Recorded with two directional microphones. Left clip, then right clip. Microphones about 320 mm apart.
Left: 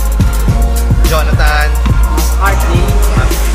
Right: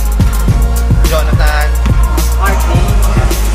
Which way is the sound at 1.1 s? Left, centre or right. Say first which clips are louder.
Left 2 dB; centre.